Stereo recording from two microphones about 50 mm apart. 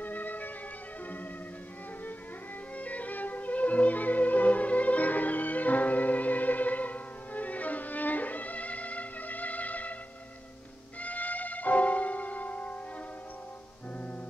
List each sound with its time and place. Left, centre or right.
0.0 s music: left
2.8 s music: left
11.0 s music: left